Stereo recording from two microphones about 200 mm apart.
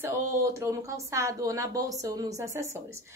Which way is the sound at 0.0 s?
15° right (ahead or behind).